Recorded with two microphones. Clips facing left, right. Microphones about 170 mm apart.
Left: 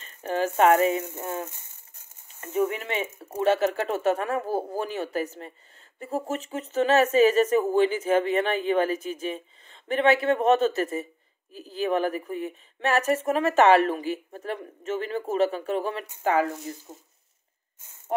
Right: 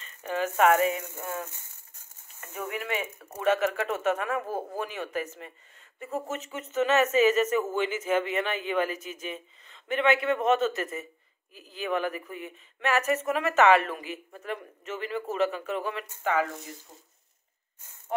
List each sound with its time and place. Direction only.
0.0 s speech: 35° left (ahead or behind)
2.5 s speech: 25° left (ahead or behind)